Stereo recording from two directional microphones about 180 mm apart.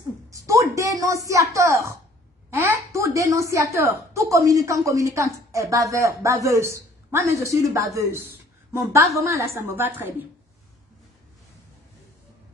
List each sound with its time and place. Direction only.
0.3 s a woman's voice: 15° right (ahead or behind)